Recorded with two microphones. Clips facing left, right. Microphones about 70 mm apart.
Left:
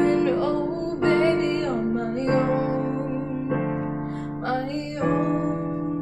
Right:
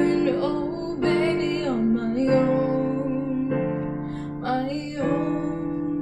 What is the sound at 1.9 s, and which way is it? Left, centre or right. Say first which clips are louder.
Music: right 2 dB; centre.